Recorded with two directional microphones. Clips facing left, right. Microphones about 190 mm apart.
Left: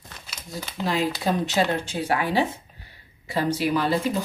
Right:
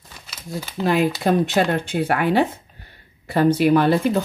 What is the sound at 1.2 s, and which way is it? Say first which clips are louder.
Speech: right 5 dB; 55° right (ahead or behind).